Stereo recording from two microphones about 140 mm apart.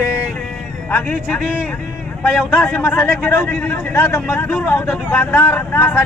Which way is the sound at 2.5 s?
10° left (ahead or behind).